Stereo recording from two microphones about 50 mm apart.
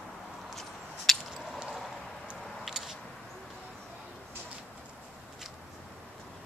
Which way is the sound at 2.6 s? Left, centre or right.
Centre.